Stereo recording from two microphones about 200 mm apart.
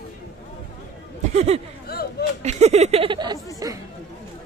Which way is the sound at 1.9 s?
50° left (ahead or behind).